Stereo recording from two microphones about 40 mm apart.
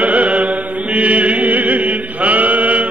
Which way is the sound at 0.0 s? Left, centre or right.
Right.